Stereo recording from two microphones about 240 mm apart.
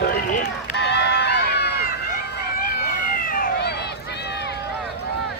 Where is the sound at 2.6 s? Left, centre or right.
Left.